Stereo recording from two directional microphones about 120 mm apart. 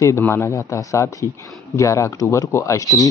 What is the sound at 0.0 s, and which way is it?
Speech, 20° left (ahead or behind).